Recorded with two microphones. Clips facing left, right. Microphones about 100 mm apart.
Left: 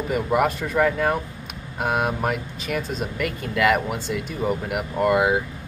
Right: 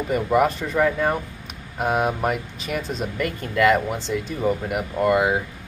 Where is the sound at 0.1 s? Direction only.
5° left (ahead or behind).